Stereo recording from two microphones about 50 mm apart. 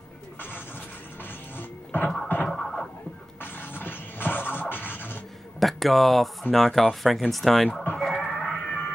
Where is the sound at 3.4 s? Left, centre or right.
Left.